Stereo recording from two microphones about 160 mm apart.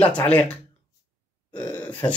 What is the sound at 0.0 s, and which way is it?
Speech, 10° left (ahead or behind).